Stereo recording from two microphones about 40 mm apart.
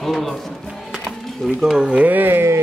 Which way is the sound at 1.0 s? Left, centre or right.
Centre.